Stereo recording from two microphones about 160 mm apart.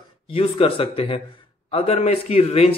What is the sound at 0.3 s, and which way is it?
A man's voice, 35° left (ahead or behind).